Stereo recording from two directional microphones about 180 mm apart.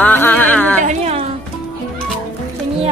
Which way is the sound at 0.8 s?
40° right (ahead or behind).